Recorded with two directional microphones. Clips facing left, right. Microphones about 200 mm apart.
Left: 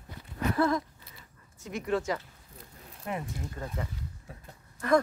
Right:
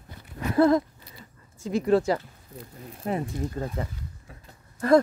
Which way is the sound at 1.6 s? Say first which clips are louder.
Right 9 dB; 30° right (ahead or behind).